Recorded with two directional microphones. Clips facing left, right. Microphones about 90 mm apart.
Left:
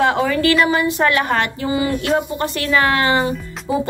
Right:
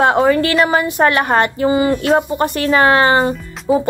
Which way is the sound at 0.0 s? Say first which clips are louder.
Right 4 dB; 40° right (ahead or behind).